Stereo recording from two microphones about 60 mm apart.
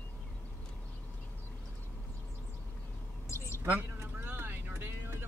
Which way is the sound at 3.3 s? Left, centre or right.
Left.